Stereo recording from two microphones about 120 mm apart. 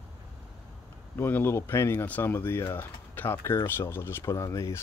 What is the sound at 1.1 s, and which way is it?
Speech, 20° left (ahead or behind).